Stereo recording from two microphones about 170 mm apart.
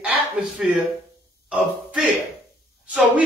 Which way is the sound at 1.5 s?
Centre (ahead or behind).